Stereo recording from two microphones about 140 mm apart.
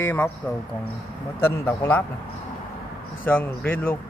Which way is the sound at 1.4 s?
20° left (ahead or behind).